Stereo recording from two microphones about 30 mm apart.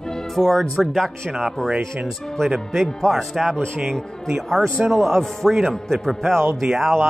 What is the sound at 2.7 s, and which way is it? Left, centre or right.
Speech, centre.